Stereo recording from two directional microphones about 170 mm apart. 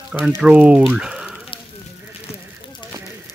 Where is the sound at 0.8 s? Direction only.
5° right (ahead or behind).